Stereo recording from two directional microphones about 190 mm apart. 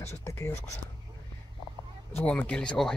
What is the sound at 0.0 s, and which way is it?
Speech, 15° left (ahead or behind).